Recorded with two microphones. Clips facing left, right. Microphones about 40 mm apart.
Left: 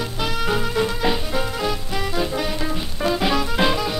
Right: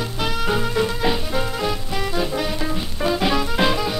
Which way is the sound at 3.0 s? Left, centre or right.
Centre.